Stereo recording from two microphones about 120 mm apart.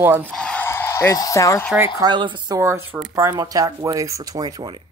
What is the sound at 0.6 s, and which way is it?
Speech, 20° left (ahead or behind).